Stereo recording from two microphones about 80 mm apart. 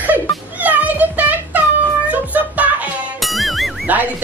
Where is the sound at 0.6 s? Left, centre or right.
Right.